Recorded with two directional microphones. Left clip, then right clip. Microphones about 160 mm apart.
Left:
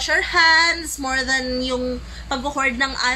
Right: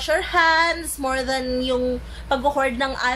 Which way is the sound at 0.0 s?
15° right (ahead or behind).